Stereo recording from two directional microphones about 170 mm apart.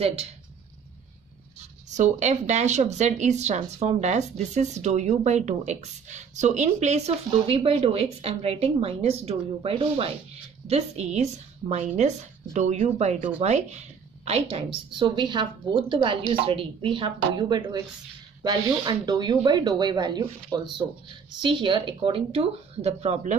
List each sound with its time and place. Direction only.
0.0 s a woman's voice: 35° right (ahead or behind)
1.6 s a woman's voice: 45° right (ahead or behind)